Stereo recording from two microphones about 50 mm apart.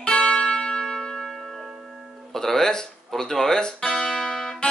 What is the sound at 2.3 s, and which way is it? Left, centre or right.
Music, centre.